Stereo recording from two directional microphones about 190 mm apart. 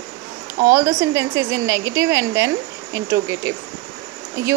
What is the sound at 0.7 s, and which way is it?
Speech, 15° right (ahead or behind).